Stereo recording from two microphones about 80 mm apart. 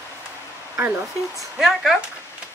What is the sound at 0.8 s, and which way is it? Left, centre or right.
Speech, right.